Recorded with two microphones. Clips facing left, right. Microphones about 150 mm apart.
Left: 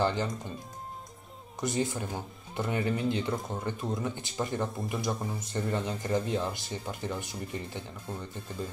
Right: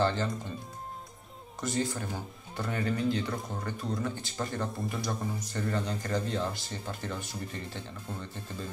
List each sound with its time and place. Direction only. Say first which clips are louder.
0.0 s speech: even; 15° left (ahead or behind)
1.6 s speech: left 1 dB; 20° left (ahead or behind)